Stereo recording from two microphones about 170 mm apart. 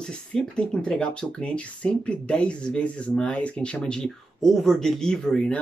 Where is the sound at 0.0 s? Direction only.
5° left (ahead or behind).